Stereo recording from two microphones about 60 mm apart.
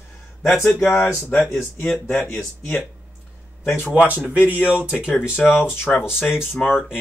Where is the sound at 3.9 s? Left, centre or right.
Right.